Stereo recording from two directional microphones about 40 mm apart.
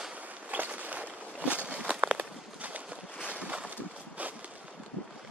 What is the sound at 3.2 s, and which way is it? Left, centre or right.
Boat, right.